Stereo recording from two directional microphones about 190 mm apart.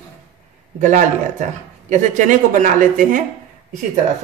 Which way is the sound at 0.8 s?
40° right (ahead or behind).